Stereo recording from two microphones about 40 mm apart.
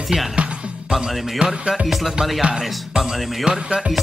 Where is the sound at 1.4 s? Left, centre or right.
Right.